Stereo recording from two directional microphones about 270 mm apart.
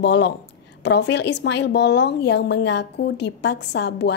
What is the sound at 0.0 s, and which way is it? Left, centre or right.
A woman's voice, left.